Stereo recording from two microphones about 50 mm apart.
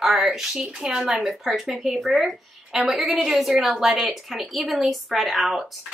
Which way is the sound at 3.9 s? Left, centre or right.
Centre.